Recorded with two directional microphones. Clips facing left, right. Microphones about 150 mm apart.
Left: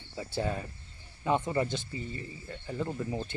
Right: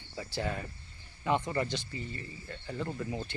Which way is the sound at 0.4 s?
25° left (ahead or behind).